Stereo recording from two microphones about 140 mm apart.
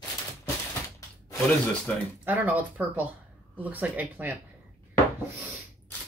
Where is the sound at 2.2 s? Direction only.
10° right (ahead or behind).